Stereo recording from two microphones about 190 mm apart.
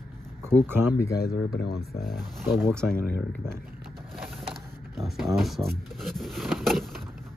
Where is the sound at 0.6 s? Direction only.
10° right (ahead or behind).